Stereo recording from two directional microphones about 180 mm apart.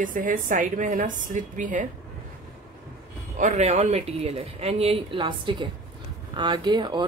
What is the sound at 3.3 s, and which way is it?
Speech, 40° right (ahead or behind).